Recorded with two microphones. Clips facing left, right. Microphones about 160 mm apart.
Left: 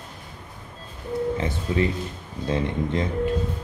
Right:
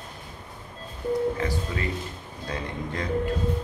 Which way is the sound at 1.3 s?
20° left (ahead or behind).